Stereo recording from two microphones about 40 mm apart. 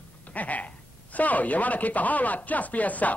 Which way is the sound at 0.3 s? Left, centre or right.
Left.